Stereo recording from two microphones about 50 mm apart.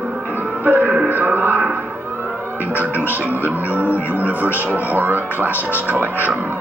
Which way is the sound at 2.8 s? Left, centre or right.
Right.